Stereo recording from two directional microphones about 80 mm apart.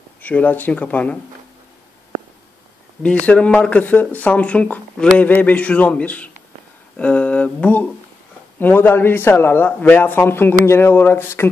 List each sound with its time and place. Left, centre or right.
0.2 s a man's voice: left
3.3 s a man's voice: centre; by 11.5 s left